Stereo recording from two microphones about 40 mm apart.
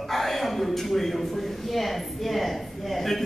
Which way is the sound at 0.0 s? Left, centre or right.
Centre.